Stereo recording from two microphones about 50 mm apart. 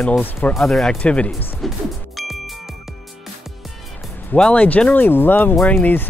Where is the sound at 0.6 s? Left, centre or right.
Centre.